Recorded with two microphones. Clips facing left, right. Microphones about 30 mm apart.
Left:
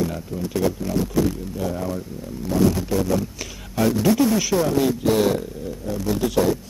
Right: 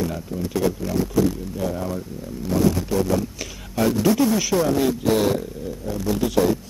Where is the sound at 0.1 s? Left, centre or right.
Centre.